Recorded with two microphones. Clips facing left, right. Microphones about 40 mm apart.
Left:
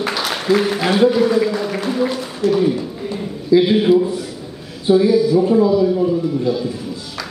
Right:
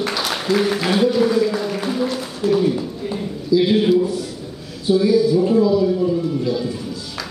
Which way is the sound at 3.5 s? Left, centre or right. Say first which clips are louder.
Left 4 dB; left.